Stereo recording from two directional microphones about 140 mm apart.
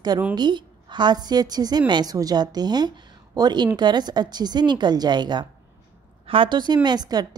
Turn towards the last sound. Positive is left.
turn(degrees=-30)  # may be behind; listen again after turning